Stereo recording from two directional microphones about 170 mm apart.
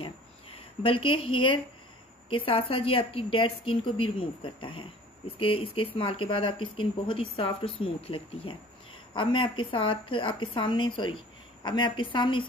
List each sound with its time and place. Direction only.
0.6 s a woman's voice: 30° left (ahead or behind)